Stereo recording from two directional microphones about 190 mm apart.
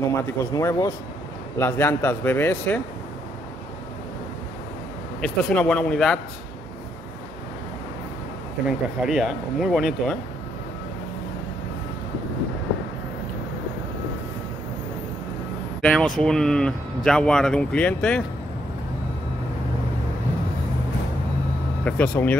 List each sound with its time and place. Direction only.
0.0 s a man's voice: 15° left (ahead or behind)
5.2 s speech: 5° left (ahead or behind)
8.6 s speech: 5° right (ahead or behind)
15.8 s speech: 5° left (ahead or behind)
21.8 s a man's voice: 5° left (ahead or behind)